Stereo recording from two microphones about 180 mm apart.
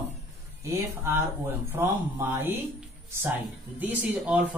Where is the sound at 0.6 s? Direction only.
15° right (ahead or behind).